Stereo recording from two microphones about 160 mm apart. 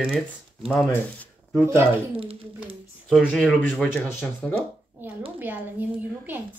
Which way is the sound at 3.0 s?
5° left (ahead or behind).